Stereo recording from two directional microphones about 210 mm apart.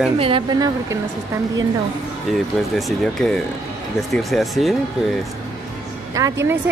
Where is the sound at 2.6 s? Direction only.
Centre (ahead or behind).